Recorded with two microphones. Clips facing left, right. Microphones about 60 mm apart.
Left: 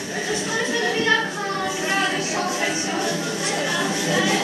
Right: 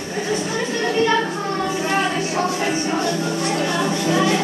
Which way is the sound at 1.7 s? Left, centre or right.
Right.